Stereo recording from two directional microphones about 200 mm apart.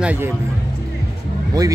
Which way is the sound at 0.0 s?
10° right (ahead or behind).